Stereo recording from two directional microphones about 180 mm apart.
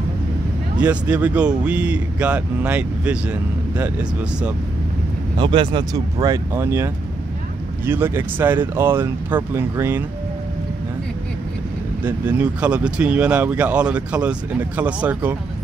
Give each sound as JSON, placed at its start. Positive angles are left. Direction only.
{"t": 0.7, "sound": "speech", "side_deg": -5}
{"t": 5.4, "sound": "speech", "side_deg": -25}
{"t": 12.0, "sound": "speech", "side_deg": -10}